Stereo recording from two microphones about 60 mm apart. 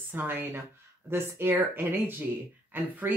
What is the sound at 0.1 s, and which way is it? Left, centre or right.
Speech, right.